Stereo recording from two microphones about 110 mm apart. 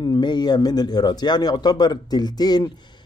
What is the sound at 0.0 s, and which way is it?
Speech, 40° left (ahead or behind).